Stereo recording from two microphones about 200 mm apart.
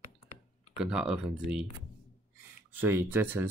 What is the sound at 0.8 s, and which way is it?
Speech, 5° right (ahead or behind).